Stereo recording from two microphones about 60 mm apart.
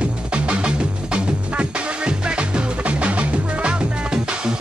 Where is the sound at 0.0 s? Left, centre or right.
Centre.